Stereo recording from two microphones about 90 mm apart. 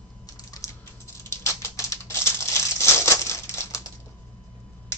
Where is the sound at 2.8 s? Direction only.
30° left (ahead or behind).